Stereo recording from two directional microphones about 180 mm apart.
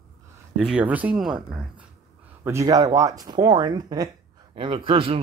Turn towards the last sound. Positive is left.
turn(degrees=-30)  # may be behind; listen again after turning